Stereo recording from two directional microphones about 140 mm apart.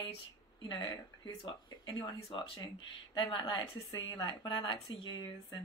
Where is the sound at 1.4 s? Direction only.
35° left (ahead or behind).